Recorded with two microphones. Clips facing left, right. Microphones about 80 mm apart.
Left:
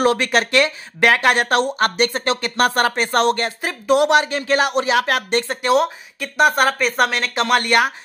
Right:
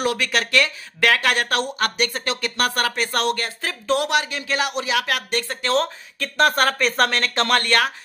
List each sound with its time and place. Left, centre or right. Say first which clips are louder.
0.0 s speech: left 5 dB; left
4.1 s speech: left 6 dB; left
5.6 s speech: left 4 dB; centre
7.6 s speech: left 3 dB; centre